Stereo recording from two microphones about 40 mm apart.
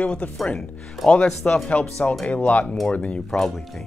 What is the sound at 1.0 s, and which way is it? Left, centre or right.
Speech, centre.